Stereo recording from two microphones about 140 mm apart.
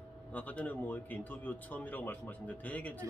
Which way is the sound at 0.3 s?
10° left (ahead or behind).